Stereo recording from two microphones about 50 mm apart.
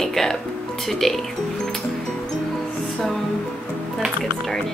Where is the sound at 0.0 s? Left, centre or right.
Centre.